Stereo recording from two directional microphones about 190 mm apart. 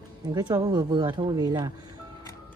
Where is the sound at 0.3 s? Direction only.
20° right (ahead or behind).